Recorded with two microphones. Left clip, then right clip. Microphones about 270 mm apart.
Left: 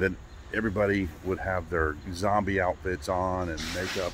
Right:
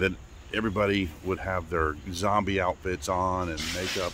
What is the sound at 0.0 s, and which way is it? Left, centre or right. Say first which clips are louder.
Speech: even; centre.